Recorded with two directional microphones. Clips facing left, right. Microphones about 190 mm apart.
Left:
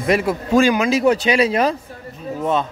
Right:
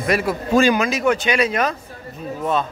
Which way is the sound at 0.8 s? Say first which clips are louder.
Left 3 dB; 30° left (ahead or behind).